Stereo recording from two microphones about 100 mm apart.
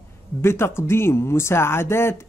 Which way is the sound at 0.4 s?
25° left (ahead or behind).